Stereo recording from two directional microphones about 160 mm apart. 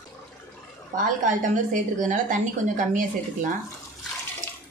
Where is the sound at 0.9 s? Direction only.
55° right (ahead or behind).